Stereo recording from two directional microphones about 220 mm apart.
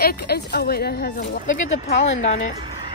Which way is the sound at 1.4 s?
35° left (ahead or behind).